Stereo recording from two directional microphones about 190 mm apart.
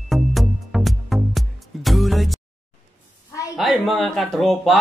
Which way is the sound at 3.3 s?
15° left (ahead or behind).